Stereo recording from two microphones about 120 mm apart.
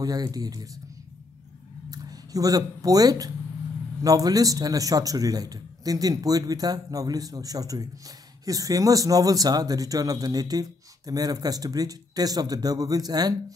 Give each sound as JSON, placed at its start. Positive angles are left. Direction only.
{"t": 0.0, "sound": "speech", "side_deg": -30}
{"t": 1.9, "sound": "speech", "side_deg": -30}